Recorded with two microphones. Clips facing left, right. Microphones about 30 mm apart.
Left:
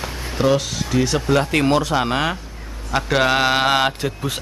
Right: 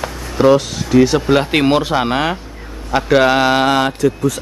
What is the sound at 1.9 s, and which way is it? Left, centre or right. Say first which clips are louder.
Speech: right 3 dB; centre.